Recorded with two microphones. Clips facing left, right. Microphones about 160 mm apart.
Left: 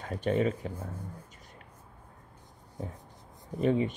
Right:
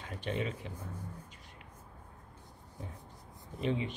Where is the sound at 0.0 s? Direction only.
45° left (ahead or behind).